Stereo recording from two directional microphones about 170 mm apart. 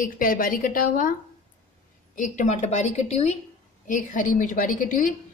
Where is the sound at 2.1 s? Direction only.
45° left (ahead or behind).